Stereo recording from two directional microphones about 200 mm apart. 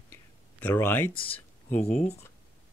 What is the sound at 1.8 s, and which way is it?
Speech, 30° left (ahead or behind).